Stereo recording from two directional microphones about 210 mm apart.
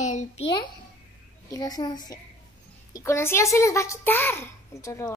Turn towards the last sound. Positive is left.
turn(degrees=15)  # may be behind; listen again after turning